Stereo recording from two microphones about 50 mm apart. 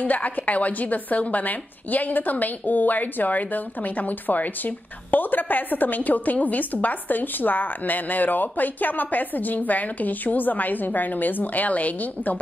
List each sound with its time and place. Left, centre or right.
0.0 s a woman's voice: left